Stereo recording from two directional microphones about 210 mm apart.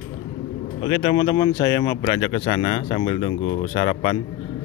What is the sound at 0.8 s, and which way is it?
Speech, 25° left (ahead or behind).